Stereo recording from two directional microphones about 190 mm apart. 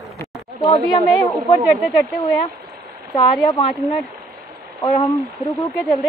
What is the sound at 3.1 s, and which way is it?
Speech, 25° left (ahead or behind).